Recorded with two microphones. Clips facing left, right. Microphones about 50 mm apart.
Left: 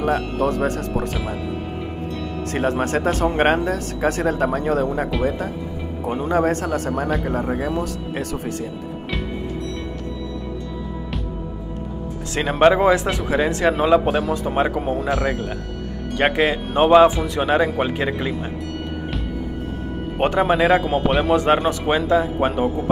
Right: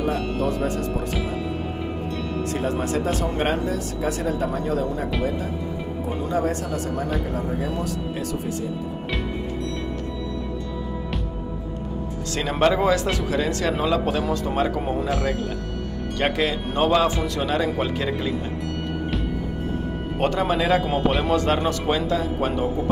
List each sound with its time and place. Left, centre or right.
0.0 s speech: left
2.5 s speech: left
6.0 s speech: left
12.4 s speech: left
13.0 s speech: centre
13.3 s speech: left
14.8 s speech: centre
16.2 s speech: left
20.2 s speech: left